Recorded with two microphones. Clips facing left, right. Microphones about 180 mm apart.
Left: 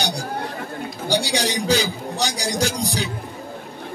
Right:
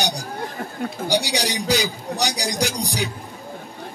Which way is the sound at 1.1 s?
15° right (ahead or behind).